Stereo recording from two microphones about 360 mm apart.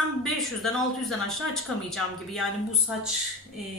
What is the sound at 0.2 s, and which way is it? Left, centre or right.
Speech, centre.